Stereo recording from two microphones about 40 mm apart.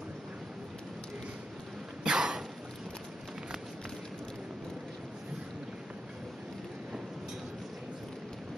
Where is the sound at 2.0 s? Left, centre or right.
Centre.